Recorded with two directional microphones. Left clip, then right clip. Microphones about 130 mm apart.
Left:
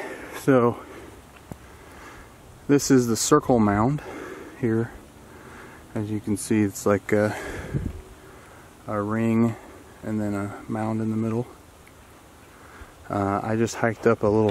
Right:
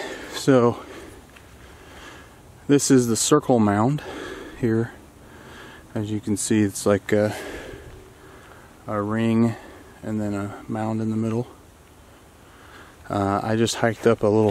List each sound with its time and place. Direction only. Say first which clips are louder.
0.0 s a sound: right 2 dB; 25° right (ahead or behind)
2.7 s speech: right 2 dB; 15° right (ahead or behind)
8.8 s speech: right 1 dB; 15° right (ahead or behind)
13.1 s speech: right 2 dB; 15° right (ahead or behind)